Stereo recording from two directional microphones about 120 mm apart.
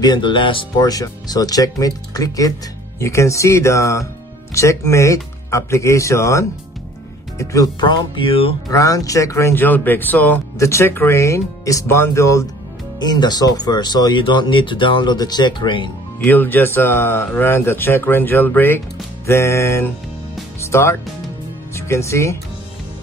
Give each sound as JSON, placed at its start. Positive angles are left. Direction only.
{"t": 0.0, "sound": "speech", "side_deg": 40}
{"t": 0.8, "sound": "speech", "side_deg": 30}
{"t": 8.2, "sound": "speech", "side_deg": 50}
{"t": 8.6, "sound": "speech", "side_deg": 30}
{"t": 13.0, "sound": "speech", "side_deg": 35}
{"t": 16.3, "sound": "speech", "side_deg": 15}